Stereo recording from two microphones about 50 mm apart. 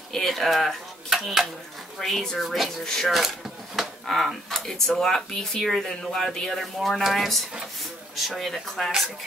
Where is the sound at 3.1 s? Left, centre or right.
Centre.